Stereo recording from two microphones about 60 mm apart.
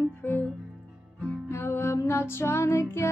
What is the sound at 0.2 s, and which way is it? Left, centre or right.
Music, left.